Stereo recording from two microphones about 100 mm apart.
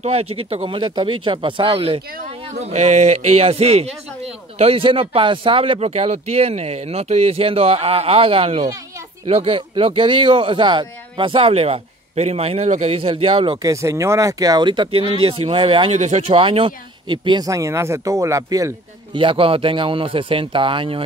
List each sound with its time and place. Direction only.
0.0 s speech: 90° right; by 13.6 s 60° right (ahead or behind)
13.6 s speech: 35° right (ahead or behind); by 17.5 s 50° right (ahead or behind)
17.5 s speech: 30° right (ahead or behind)
19.1 s speech: 60° right (ahead or behind)